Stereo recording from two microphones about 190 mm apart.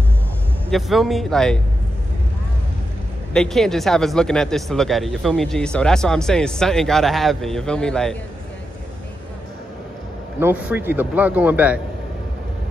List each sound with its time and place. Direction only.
0.7 s speech: centre (ahead or behind)
3.3 s speech: centre (ahead or behind)
10.4 s a man's voice: 10° right (ahead or behind)